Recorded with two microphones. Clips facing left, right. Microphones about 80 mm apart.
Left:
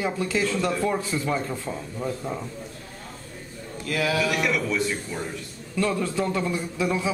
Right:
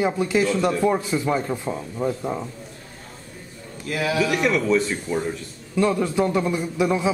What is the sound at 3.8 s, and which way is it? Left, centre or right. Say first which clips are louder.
Speech: right 2 dB; right.